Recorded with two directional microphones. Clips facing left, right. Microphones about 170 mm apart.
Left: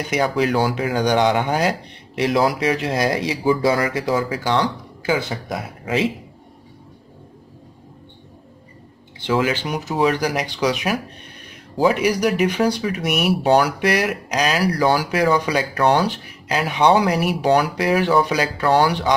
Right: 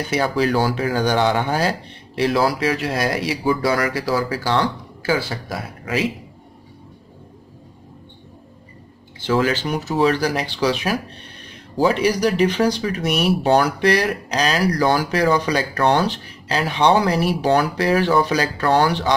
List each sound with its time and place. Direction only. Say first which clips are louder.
0.1 s speech: even; 15° left (ahead or behind)
9.2 s speech: right 1 dB; 15° left (ahead or behind)